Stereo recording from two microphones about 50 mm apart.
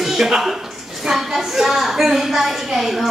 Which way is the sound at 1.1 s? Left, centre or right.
Centre.